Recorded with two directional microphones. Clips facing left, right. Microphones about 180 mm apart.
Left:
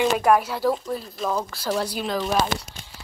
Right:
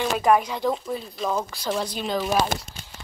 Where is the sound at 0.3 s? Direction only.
5° left (ahead or behind).